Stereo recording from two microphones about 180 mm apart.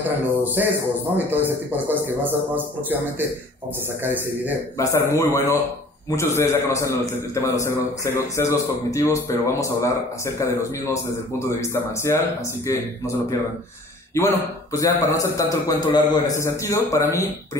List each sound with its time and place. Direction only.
0.6 s a man's voice: 10° right (ahead or behind)
1.9 s a man's voice: 10° right (ahead or behind)
4.7 s a man's voice: 15° left (ahead or behind)
14.1 s a man's voice: 15° left (ahead or behind)